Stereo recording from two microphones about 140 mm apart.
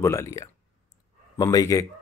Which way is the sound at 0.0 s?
20° left (ahead or behind).